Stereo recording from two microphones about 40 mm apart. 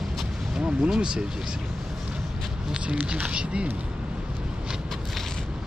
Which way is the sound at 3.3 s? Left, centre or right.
Right.